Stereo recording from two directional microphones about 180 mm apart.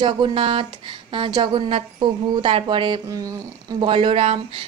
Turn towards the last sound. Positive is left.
turn(degrees=-30)  # may be behind; listen again after turning